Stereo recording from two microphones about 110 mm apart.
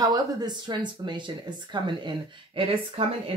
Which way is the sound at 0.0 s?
35° right (ahead or behind).